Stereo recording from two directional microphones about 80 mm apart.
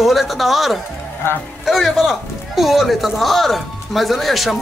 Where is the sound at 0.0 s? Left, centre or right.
Centre.